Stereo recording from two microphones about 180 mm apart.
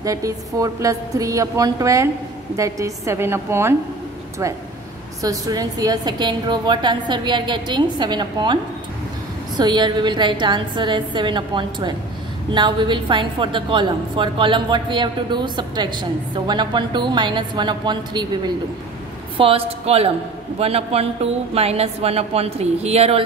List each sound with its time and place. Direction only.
0.0 s a woman's voice: 20° right (ahead or behind)
5.2 s a woman's voice: 20° right (ahead or behind)
9.6 s a woman's voice: 25° right (ahead or behind)
19.3 s a woman's voice: 30° right (ahead or behind)